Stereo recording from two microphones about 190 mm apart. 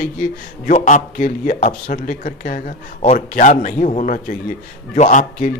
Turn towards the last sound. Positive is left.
turn(degrees=40)  # may be behind; listen again after turning